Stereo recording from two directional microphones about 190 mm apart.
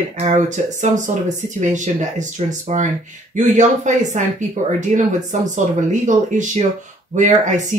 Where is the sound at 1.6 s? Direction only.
40° right (ahead or behind).